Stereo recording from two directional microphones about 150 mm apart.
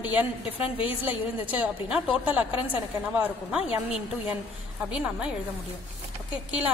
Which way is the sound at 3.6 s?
40° left (ahead or behind).